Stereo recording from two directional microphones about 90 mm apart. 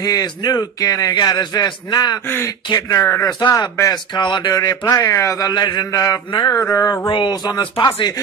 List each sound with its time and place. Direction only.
0.0 s a man's voice: 45° left (ahead or behind)
2.2 s speech: 25° left (ahead or behind)
3.3 s a man's voice: 50° left (ahead or behind)
5.5 s a man's voice: 50° left (ahead or behind)
6.7 s speech: 35° left (ahead or behind)
7.1 s speech: 60° left (ahead or behind)